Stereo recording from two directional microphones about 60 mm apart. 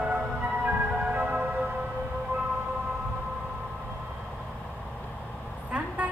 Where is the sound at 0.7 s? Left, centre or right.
Centre.